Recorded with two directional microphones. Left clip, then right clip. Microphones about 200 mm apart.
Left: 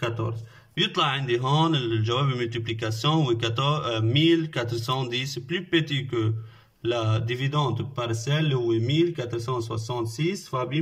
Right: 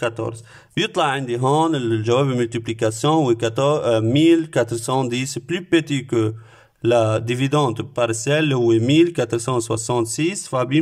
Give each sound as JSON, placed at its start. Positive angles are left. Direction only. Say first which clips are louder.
{"t": 0.7, "sound": "a man's voice", "louder": "right 5 dB", "side_deg": -40}